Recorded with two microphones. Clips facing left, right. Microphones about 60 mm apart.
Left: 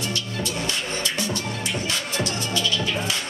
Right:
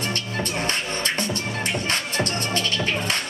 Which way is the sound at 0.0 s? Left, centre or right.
Right.